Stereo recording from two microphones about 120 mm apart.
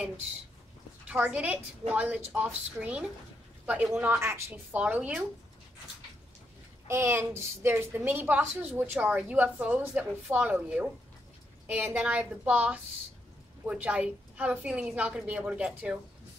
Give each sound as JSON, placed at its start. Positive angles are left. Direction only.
{"t": 1.0, "sound": "a woman's voice", "side_deg": -10}
{"t": 6.9, "sound": "a woman's voice", "side_deg": -20}